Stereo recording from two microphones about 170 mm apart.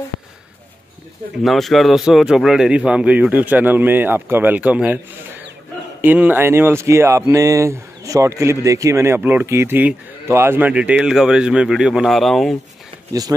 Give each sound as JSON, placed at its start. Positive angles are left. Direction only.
{"t": 1.4, "sound": "a man's voice", "side_deg": 0}